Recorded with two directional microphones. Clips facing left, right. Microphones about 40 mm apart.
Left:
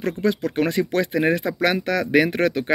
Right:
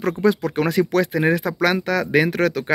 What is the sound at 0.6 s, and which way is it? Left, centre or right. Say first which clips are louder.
Speech: right 2 dB; centre.